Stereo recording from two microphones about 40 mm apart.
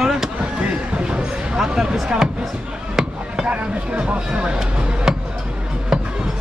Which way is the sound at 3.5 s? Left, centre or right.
Right.